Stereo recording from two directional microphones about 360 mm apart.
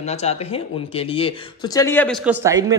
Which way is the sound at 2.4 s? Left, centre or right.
Centre.